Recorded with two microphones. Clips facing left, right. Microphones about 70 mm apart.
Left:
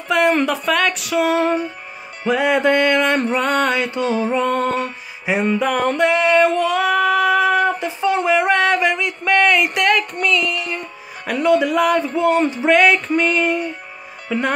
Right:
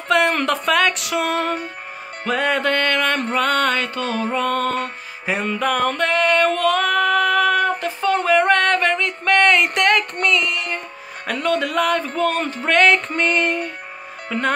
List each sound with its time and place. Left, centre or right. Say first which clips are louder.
0.1 s a sound: left 1 dB; centre
0.4 s speech: even; centre
2.2 s music: left 4 dB; centre
5.9 s a sound: left 3 dB; centre
10.2 s music: left 1 dB; centre
11.3 s music: left 5 dB; centre
12.7 s speech: even; centre